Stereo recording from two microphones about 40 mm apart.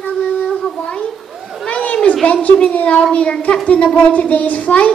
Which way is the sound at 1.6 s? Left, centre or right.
Left.